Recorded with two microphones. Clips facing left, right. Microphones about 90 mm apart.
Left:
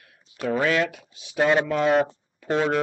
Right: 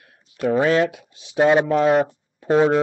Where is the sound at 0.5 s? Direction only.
30° right (ahead or behind).